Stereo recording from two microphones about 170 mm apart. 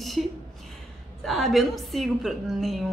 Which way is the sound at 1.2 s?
Centre (ahead or behind).